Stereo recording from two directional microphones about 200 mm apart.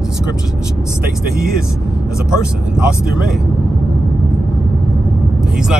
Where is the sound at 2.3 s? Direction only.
5° right (ahead or behind).